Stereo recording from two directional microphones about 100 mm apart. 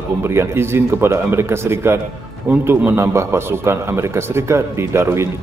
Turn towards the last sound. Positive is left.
turn(degrees=-25)  # may be behind; listen again after turning